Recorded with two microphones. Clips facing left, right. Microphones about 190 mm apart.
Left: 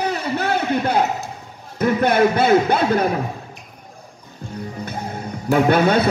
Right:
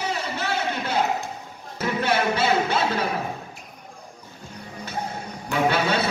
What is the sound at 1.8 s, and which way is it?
Speech, 50° left (ahead or behind).